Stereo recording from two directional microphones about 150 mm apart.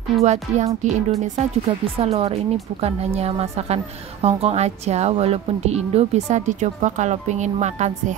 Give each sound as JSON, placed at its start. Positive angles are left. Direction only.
{"t": 0.2, "sound": "a woman's voice", "side_deg": -50}